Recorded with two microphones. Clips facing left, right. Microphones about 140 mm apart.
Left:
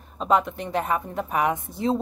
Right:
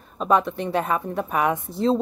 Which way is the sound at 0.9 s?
45° right (ahead or behind).